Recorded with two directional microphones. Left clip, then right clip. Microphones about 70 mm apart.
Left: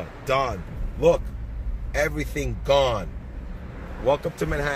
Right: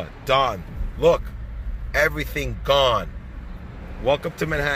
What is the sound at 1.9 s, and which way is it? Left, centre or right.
Speech, centre.